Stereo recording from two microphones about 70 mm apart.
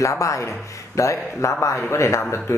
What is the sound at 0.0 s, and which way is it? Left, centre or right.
Speech, left.